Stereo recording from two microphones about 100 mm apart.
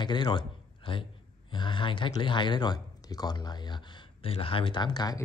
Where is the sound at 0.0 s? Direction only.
50° left (ahead or behind).